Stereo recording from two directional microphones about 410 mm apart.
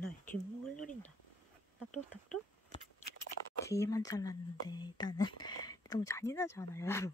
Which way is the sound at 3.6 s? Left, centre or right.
Centre.